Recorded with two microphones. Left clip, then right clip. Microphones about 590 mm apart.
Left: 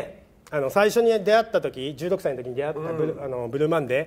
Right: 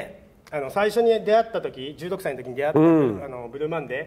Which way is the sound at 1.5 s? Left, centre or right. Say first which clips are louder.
Left 4 dB; left.